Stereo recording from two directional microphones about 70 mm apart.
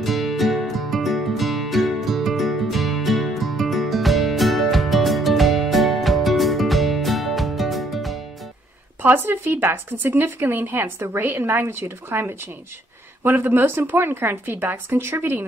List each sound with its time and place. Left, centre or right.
0.0 s music: centre
9.0 s speech: right